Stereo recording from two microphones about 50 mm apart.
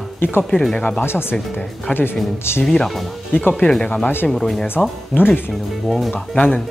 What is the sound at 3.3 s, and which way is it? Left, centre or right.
Speech, left.